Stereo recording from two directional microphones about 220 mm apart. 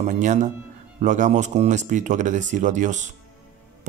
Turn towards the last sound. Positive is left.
turn(degrees=-35)  # may be behind; listen again after turning